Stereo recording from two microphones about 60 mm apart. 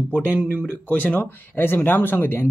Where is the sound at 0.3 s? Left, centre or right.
Right.